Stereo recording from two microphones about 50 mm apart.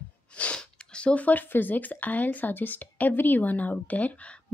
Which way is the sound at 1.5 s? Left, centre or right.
Left.